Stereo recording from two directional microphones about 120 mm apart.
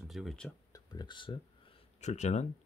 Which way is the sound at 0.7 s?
35° left (ahead or behind).